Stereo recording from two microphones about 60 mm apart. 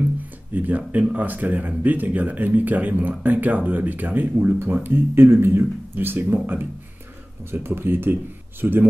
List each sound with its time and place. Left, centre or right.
0.6 s speech: right